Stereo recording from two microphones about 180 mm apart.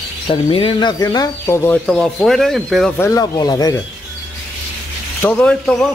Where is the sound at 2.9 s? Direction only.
20° left (ahead or behind).